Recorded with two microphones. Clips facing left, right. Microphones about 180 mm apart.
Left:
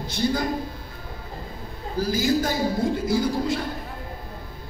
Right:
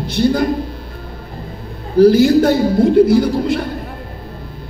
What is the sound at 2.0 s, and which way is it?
A man's voice, 65° right (ahead or behind).